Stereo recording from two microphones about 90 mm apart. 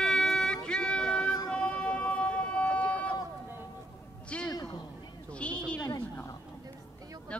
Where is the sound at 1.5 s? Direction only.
10° left (ahead or behind).